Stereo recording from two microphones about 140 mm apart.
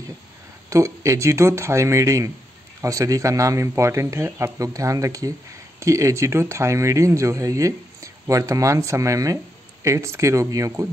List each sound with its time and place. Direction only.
0.7 s speech: 20° right (ahead or behind)